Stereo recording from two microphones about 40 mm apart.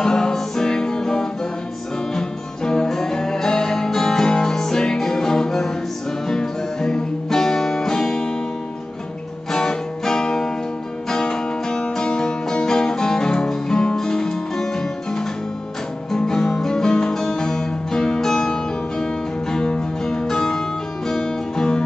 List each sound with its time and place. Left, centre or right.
0.0 s music: centre
9.5 s music: centre